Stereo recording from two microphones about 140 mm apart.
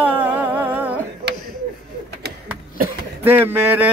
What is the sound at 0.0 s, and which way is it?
Music, 10° right (ahead or behind).